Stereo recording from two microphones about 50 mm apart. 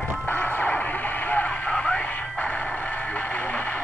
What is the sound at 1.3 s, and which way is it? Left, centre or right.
Radio, left.